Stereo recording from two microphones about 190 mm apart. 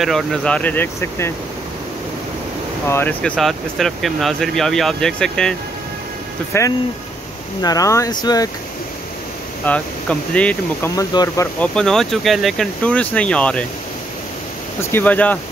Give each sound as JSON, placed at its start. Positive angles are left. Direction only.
{"t": 0.0, "sound": "speech", "side_deg": 0}
{"t": 2.9, "sound": "speech", "side_deg": 10}
{"t": 6.5, "sound": "speech", "side_deg": 15}
{"t": 9.7, "sound": "speech", "side_deg": 5}
{"t": 11.0, "sound": "speech", "side_deg": 15}
{"t": 11.6, "sound": "speech", "side_deg": 5}
{"t": 14.8, "sound": "speech", "side_deg": 10}